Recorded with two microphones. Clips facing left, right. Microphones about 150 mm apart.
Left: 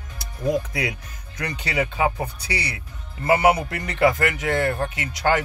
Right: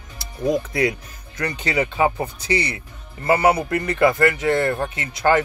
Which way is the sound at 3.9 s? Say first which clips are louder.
Right 2 dB; 15° left (ahead or behind).